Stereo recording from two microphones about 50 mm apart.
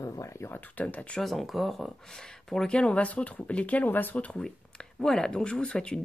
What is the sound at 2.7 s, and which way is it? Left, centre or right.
Speech, left.